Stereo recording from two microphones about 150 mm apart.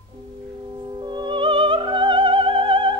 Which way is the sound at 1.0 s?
30° right (ahead or behind).